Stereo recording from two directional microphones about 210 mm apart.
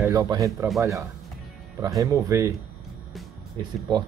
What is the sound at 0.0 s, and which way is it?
Speech, 15° right (ahead or behind).